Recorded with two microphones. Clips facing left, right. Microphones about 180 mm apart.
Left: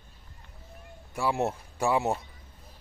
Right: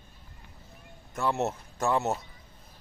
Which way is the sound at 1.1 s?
10° left (ahead or behind).